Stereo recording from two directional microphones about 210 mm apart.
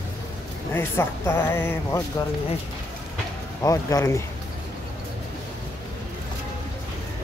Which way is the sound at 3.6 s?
15° left (ahead or behind).